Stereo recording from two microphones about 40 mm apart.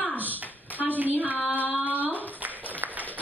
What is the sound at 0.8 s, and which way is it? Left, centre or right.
Speech, right.